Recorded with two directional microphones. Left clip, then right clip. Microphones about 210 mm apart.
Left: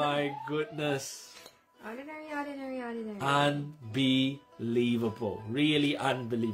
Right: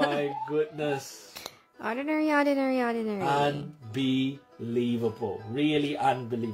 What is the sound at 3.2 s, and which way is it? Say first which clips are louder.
Speech: even; 40° left (ahead or behind).